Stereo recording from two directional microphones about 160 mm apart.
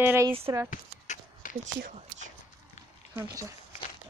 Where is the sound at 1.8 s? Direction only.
50° right (ahead or behind).